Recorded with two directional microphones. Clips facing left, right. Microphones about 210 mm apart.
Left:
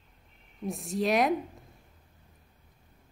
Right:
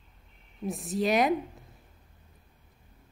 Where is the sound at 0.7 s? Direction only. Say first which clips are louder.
Right 1 dB; centre (ahead or behind).